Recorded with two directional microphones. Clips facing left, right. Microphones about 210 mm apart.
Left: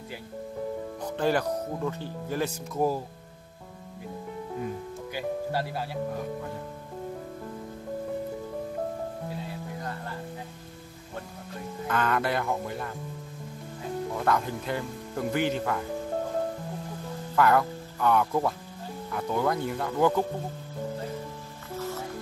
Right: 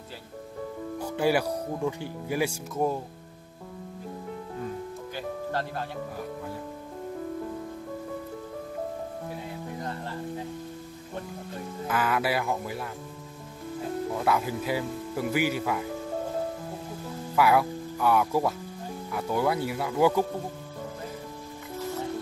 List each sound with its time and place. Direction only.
0.9 s speech: 10° right (ahead or behind)
5.1 s music: 10° left (ahead or behind)
11.9 s speech: 5° right (ahead or behind)
14.1 s speech: 5° right (ahead or behind)
17.4 s speech: 10° right (ahead or behind)